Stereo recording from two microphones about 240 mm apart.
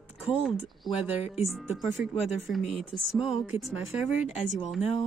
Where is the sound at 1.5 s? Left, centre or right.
Centre.